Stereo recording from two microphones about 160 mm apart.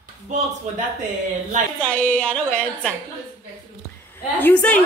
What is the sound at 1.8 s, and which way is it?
A woman's voice, 10° left (ahead or behind).